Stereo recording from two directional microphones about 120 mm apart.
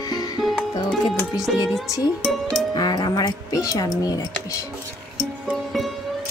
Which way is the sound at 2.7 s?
35° left (ahead or behind).